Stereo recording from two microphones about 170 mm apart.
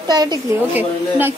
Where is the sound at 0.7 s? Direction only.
10° right (ahead or behind).